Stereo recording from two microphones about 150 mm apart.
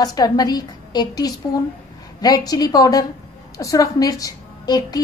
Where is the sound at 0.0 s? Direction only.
25° left (ahead or behind).